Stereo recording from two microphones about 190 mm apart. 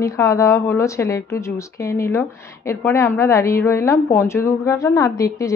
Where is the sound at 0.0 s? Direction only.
15° left (ahead or behind).